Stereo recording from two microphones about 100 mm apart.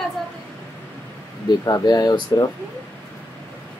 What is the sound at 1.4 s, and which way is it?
Speech, 40° left (ahead or behind).